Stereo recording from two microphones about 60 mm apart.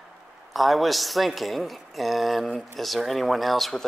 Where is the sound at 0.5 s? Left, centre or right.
Centre.